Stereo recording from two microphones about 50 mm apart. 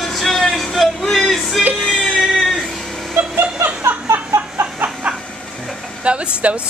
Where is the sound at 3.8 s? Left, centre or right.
Right.